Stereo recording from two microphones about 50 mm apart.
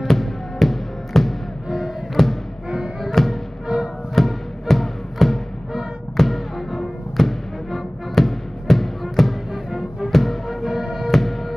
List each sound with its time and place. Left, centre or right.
0.0 s music: centre
3.6 s music: centre
4.1 s music: centre